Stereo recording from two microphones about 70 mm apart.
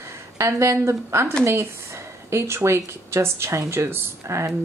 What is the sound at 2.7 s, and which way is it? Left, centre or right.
Speech, right.